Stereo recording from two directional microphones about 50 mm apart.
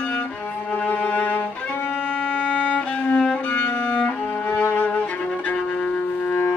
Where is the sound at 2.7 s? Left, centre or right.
Left.